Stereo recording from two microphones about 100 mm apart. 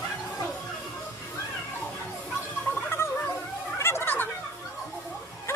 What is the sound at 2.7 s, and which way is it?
Gargling, 25° left (ahead or behind).